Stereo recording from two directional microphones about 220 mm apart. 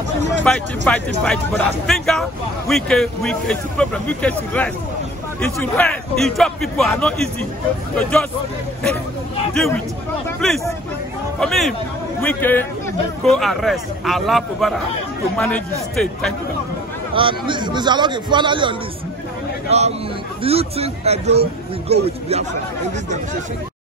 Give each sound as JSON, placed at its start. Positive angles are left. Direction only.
{"t": 0.4, "sound": "a man's voice", "side_deg": 5}
{"t": 9.5, "sound": "a man's voice", "side_deg": 5}
{"t": 17.1, "sound": "a man's voice", "side_deg": -25}